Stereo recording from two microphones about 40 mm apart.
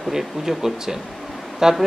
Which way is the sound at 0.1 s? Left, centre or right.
Centre.